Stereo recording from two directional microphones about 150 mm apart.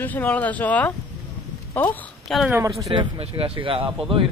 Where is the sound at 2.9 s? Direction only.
40° right (ahead or behind).